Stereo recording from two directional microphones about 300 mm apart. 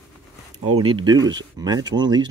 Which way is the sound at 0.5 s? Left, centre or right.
Right.